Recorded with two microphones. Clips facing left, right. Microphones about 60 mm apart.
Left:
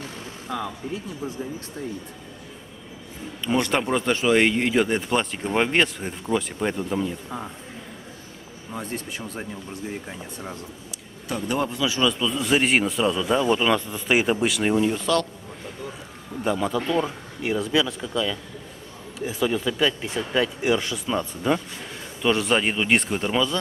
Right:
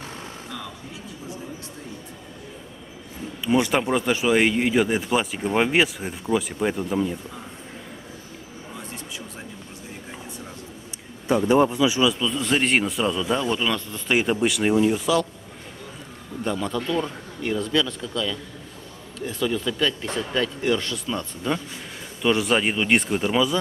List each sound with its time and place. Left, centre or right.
3.4 s speech: centre
11.2 s a man's voice: right
12.0 s speech: centre
16.4 s a man's voice: centre
22.2 s speech: centre